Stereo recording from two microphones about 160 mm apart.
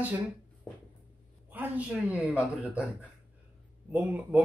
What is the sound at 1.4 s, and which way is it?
Speech, 10° right (ahead or behind).